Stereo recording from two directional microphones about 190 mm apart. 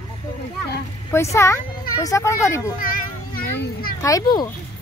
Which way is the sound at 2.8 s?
50° left (ahead or behind).